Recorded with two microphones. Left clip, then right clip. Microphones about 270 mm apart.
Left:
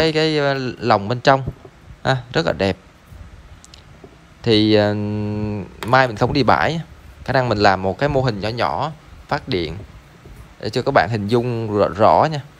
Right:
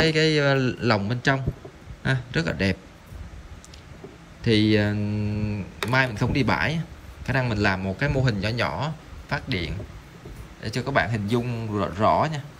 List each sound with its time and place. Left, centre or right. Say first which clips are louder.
0.0 s a man's voice: left 4 dB; centre
4.4 s a man's voice: left 7 dB; centre